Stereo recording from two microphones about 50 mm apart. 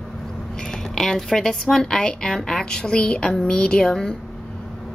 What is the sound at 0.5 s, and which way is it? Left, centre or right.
Speech, centre.